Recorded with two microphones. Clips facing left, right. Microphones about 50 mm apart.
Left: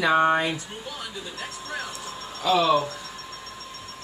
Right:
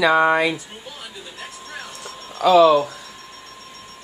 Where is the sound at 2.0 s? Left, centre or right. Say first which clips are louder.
Right 9 dB; right.